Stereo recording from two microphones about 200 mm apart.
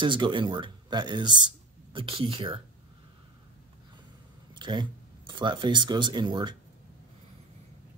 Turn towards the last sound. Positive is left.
turn(degrees=-20)  # may be behind; listen again after turning